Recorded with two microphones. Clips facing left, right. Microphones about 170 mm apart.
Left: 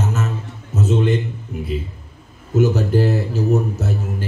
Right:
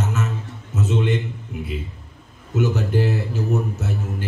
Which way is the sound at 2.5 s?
40° left (ahead or behind).